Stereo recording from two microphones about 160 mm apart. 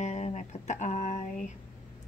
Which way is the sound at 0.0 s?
45° left (ahead or behind).